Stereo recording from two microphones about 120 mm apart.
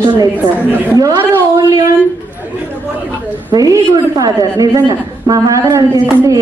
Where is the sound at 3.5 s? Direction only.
30° right (ahead or behind).